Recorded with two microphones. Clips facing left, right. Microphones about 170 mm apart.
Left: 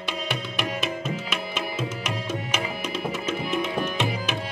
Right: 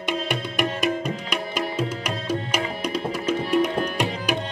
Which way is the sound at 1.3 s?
10° right (ahead or behind).